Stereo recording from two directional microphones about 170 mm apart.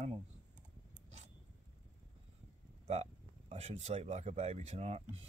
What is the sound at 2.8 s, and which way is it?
Speech, 40° right (ahead or behind).